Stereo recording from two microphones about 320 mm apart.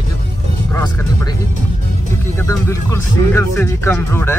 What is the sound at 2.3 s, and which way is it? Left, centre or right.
Speech, centre.